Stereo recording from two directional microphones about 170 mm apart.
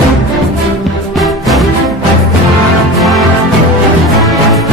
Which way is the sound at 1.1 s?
Centre (ahead or behind).